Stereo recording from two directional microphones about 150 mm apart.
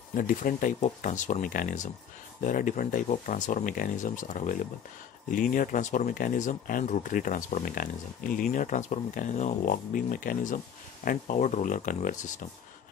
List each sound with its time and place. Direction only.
0.1 s speech: 65° left (ahead or behind)